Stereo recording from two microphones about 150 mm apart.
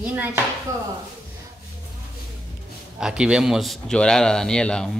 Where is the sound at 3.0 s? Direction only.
5° right (ahead or behind).